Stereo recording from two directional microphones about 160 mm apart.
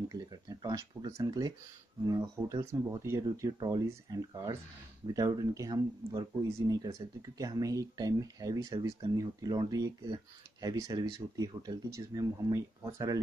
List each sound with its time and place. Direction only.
0.1 s speech: 25° right (ahead or behind)